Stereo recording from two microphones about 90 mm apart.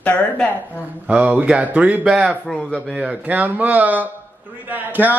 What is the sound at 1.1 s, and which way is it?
Speech, 15° right (ahead or behind).